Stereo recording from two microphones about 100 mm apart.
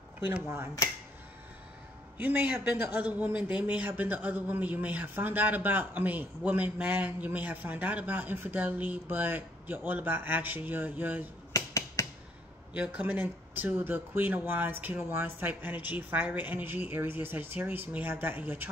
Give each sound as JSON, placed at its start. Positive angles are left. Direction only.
{"t": 0.3, "sound": "speech", "side_deg": -20}
{"t": 2.1, "sound": "speech", "side_deg": -20}
{"t": 11.5, "sound": "finger snapping", "side_deg": 35}
{"t": 12.7, "sound": "speech", "side_deg": -15}